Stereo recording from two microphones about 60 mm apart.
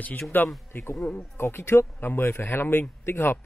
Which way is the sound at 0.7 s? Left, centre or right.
Left.